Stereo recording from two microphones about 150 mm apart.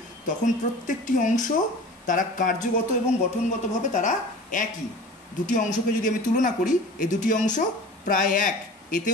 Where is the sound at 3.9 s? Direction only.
60° left (ahead or behind).